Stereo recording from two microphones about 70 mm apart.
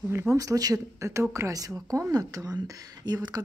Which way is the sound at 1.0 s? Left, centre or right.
Right.